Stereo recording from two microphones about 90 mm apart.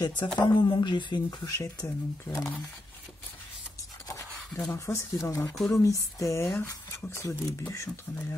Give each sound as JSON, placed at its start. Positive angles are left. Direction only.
{"t": 0.0, "sound": "speech", "side_deg": 60}
{"t": 1.4, "sound": "speech", "side_deg": 40}
{"t": 4.7, "sound": "speech", "side_deg": 35}